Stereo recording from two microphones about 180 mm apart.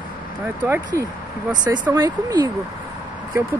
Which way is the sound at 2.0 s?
20° right (ahead or behind).